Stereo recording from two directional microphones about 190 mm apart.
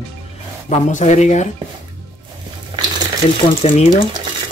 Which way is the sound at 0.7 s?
35° left (ahead or behind).